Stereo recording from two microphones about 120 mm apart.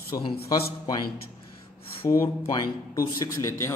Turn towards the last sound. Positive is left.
turn(degrees=25)  # may be behind; listen again after turning